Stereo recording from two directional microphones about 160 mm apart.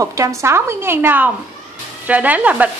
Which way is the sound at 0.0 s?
20° right (ahead or behind).